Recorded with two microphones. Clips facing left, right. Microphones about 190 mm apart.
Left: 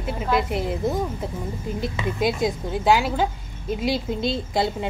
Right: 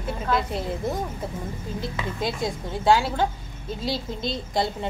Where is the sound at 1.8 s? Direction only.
20° left (ahead or behind).